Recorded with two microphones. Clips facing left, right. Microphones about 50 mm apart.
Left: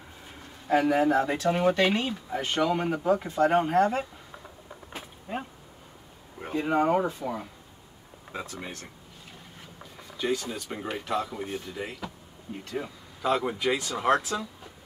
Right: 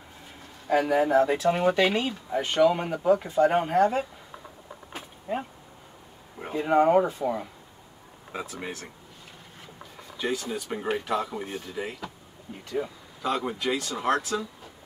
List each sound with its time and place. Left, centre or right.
0.8 s speech: centre
6.4 s speech: centre
8.3 s speech: centre
10.1 s speech: centre